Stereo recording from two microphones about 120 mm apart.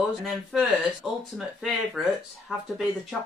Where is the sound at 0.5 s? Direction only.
Centre (ahead or behind).